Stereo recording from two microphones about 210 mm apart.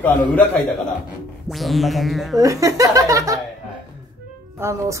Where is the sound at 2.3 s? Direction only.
15° right (ahead or behind).